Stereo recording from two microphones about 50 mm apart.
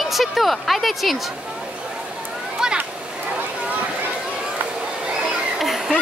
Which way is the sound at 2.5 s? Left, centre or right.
Centre.